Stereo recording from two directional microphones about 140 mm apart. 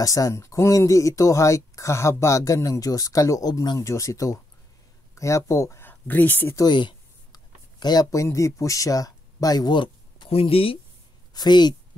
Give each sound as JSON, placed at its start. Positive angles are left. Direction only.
{"t": 0.0, "sound": "speech", "side_deg": 25}
{"t": 6.6, "sound": "speech", "side_deg": 35}
{"t": 11.3, "sound": "a woman's voice", "side_deg": 30}